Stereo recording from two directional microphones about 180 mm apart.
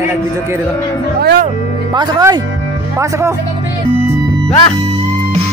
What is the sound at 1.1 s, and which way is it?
Speech, 60° right (ahead or behind).